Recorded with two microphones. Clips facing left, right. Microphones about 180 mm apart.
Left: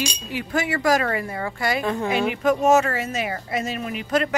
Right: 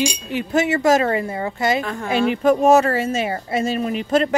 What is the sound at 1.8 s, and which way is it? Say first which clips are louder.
Speech: right 2 dB; 20° left (ahead or behind).